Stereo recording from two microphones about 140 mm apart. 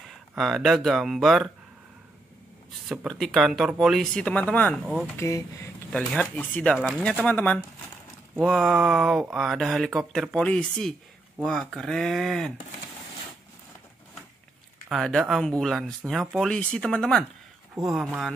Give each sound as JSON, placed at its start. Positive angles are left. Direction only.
{"t": 0.4, "sound": "speech", "side_deg": 0}
{"t": 2.9, "sound": "speech", "side_deg": 0}
{"t": 5.9, "sound": "speech", "side_deg": 5}
{"t": 14.9, "sound": "speech", "side_deg": 0}